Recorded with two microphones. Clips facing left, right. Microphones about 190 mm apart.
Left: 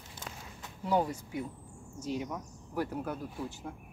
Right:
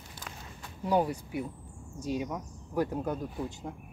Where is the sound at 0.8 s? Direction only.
15° right (ahead or behind).